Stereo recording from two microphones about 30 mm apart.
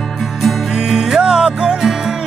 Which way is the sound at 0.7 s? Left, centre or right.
Centre.